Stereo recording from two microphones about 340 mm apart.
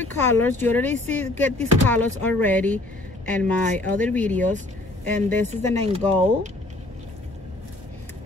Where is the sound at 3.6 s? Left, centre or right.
Right.